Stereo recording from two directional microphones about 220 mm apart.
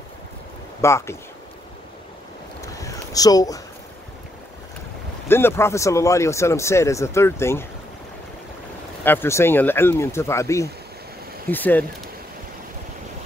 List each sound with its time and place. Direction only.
0.7 s speech: 10° left (ahead or behind)
2.6 s a sound: 15° left (ahead or behind)
5.3 s speech: 10° left (ahead or behind)
9.0 s speech: 10° left (ahead or behind)